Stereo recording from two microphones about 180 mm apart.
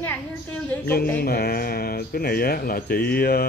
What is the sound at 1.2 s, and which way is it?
Speech, 60° left (ahead or behind).